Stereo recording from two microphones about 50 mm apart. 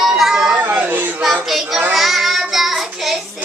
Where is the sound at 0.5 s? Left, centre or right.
Right.